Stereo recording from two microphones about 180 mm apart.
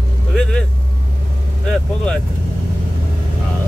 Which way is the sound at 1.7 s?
5° left (ahead or behind).